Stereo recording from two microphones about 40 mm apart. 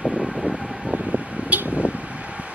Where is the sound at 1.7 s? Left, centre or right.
Right.